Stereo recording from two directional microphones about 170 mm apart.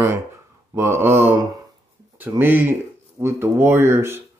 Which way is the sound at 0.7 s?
15° right (ahead or behind).